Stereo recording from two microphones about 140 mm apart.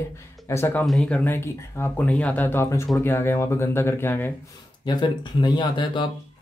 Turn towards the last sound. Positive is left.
turn(degrees=35)  # may be behind; listen again after turning